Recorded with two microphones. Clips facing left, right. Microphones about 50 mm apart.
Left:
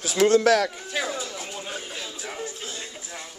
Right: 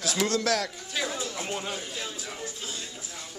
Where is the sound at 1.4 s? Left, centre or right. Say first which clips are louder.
Right 3 dB; right.